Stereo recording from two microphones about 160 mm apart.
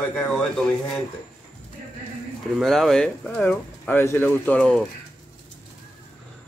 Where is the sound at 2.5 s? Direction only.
Centre (ahead or behind).